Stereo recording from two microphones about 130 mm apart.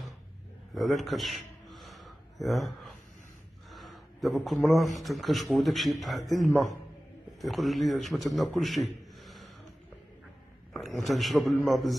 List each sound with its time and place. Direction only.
0.7 s a sound: centre (ahead or behind)
5.0 s a man's voice: centre (ahead or behind)
10.7 s a man's voice: centre (ahead or behind)